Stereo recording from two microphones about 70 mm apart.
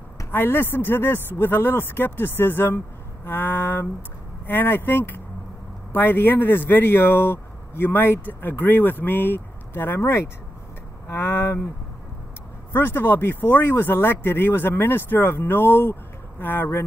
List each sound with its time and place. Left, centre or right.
0.3 s speech: left
12.7 s speech: left